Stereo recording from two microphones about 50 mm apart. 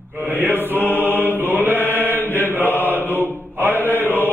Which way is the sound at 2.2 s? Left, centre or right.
Left.